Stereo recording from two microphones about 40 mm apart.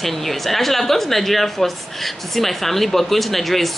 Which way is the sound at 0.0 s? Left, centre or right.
Centre.